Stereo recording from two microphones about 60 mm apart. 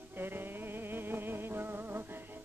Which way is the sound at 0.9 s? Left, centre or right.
Right.